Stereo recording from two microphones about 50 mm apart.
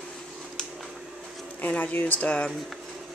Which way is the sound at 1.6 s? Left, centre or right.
Left.